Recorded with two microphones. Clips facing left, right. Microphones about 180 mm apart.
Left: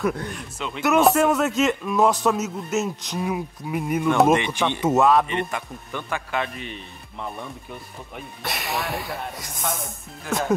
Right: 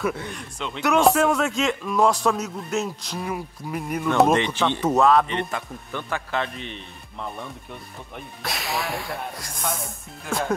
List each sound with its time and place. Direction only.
0.0 s a man's voice: centre (ahead or behind)
4.3 s speech: 15° left (ahead or behind)
4.8 s a man's voice: 5° left (ahead or behind)
5.3 s a man's voice: 15° left (ahead or behind)